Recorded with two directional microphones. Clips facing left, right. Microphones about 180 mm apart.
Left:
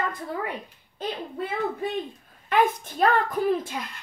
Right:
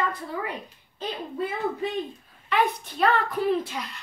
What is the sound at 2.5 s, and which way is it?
A woman's voice, 45° left (ahead or behind).